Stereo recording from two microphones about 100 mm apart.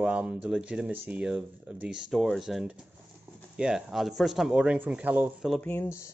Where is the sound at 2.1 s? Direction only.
Centre (ahead or behind); by 5.3 s 15° right (ahead or behind).